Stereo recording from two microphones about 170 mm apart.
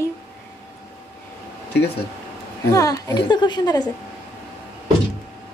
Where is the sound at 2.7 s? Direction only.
20° left (ahead or behind).